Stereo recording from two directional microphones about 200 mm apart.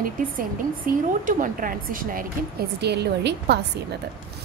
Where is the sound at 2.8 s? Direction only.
55° right (ahead or behind).